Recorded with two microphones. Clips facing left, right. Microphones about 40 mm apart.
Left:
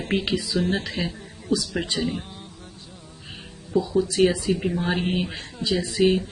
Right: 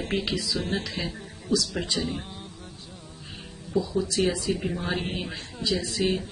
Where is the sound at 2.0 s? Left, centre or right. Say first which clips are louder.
Left 3 dB; centre.